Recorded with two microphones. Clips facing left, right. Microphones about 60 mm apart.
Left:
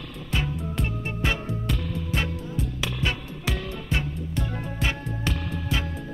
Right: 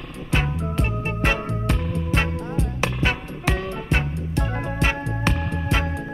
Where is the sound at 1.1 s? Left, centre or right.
Right.